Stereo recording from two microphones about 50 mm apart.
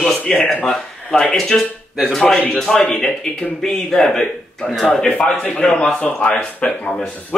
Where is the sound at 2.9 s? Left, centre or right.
Centre.